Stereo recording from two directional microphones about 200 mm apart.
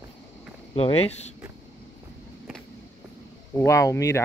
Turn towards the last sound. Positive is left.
turn(degrees=15)  # may be behind; listen again after turning